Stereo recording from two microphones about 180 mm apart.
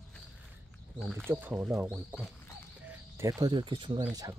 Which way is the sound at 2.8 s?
10° right (ahead or behind).